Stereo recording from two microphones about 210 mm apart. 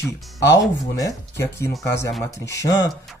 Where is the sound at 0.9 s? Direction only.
15° left (ahead or behind).